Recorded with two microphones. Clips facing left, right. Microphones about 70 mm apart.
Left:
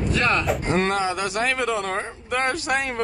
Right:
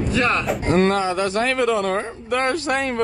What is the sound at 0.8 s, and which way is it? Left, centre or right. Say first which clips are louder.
Speech: right 7 dB; centre.